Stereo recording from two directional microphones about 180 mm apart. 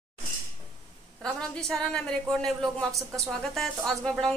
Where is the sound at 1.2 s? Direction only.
5° left (ahead or behind).